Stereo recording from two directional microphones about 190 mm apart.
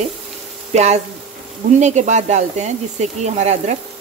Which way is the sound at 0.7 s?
35° right (ahead or behind).